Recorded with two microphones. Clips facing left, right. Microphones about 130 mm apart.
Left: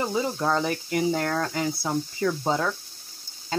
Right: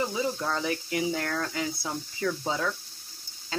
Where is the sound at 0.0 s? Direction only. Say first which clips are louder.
Left 3 dB; 50° left (ahead or behind).